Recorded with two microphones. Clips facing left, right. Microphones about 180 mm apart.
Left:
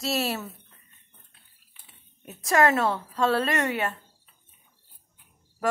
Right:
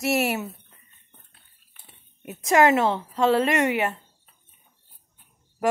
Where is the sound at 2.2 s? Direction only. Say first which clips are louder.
Right 3 dB; 15° right (ahead or behind).